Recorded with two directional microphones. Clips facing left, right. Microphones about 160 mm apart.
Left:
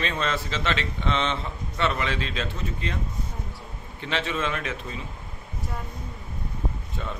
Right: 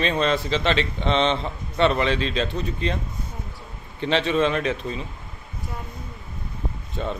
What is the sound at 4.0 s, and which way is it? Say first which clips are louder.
A man's voice: right 7 dB; 25° right (ahead or behind).